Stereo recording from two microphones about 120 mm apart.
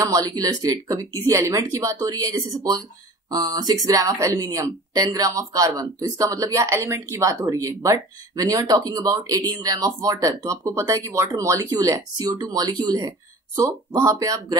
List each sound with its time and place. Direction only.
0.0 s speech: 30° right (ahead or behind)